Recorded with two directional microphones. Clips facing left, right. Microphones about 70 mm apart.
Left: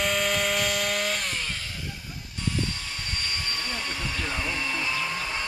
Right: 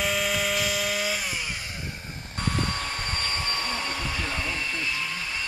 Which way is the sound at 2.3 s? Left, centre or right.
Right.